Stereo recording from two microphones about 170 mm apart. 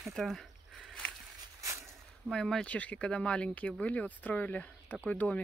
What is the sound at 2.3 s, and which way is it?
Speech, 5° left (ahead or behind).